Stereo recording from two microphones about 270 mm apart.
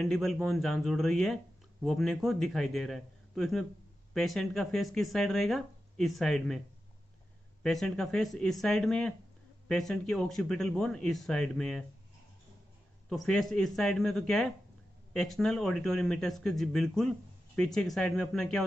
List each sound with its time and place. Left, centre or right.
0.0 s speech: centre
7.6 s speech: centre
13.1 s speech: centre